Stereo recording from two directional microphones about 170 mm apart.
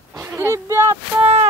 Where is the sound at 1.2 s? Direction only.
35° right (ahead or behind).